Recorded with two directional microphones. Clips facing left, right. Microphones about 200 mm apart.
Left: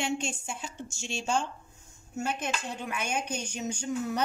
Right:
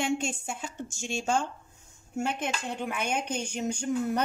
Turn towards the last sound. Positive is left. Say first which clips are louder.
# right 3 dB
turn(degrees=-55)  # may be behind; listen again after turning